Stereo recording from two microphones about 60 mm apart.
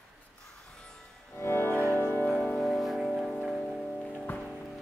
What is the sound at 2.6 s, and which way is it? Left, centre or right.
Music, centre.